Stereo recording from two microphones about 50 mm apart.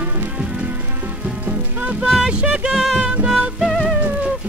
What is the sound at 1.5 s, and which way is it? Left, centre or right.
Music, right.